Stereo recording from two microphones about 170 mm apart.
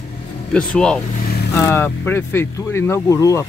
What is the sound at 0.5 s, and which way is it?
Speech, 5° left (ahead or behind).